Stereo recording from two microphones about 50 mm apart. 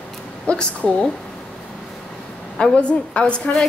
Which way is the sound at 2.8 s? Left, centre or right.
Left.